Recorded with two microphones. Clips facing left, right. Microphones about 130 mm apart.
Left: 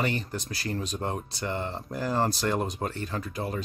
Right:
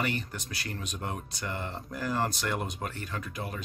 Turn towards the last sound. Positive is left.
turn(degrees=30)  # may be behind; listen again after turning